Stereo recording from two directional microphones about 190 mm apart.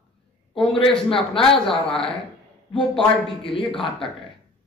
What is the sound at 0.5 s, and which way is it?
Speech, 25° left (ahead or behind).